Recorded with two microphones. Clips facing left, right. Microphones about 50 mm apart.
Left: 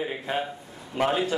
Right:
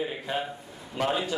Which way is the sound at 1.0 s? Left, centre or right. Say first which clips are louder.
Left 3 dB; left.